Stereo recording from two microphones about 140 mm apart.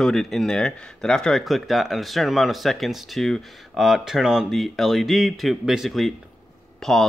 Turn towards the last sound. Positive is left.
turn(degrees=5)  # may be behind; listen again after turning